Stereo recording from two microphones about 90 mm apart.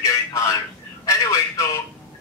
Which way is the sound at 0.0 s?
35° left (ahead or behind).